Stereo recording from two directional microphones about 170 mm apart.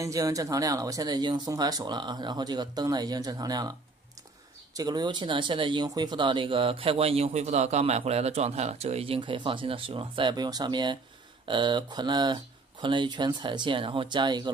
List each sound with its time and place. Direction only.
0.0 s speech: 20° right (ahead or behind)
4.7 s speech: 25° right (ahead or behind)